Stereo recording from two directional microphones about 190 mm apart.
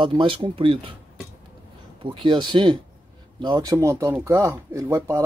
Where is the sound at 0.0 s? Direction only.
30° right (ahead or behind).